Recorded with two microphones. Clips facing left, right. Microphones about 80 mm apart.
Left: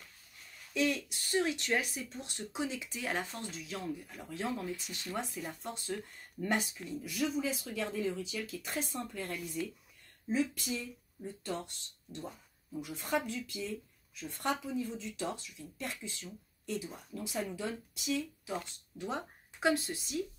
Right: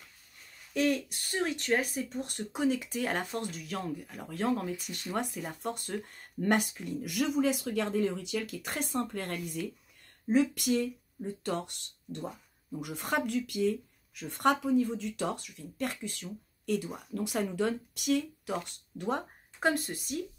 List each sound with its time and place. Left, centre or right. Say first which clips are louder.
0.7 s speech: right 4 dB; right